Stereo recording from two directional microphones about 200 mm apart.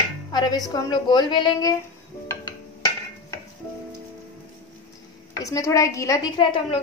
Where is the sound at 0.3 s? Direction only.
20° left (ahead or behind).